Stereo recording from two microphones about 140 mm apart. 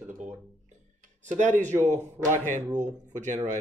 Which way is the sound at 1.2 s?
60° right (ahead or behind).